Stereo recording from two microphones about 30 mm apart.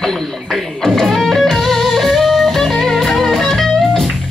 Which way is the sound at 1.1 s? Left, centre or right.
Centre.